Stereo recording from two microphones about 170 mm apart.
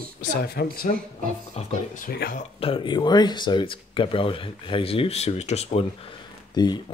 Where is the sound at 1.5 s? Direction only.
50° left (ahead or behind).